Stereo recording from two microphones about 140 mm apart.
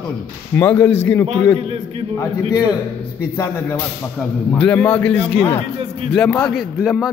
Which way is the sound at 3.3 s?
20° left (ahead or behind).